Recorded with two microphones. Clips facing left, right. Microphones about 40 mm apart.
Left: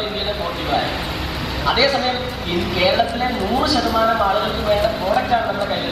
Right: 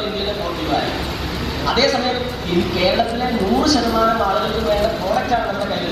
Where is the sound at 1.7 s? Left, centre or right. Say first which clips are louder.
Even; centre.